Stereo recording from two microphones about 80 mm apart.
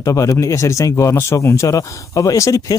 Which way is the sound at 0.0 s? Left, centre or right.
Left.